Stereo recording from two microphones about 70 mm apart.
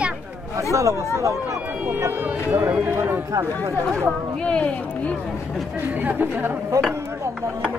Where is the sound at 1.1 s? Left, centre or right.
Right.